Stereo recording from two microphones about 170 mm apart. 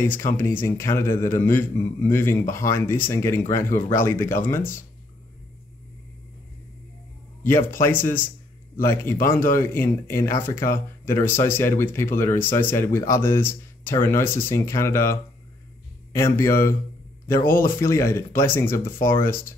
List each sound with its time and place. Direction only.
0.0 s a man's voice: 10° left (ahead or behind)
7.8 s a man's voice: 10° left (ahead or behind)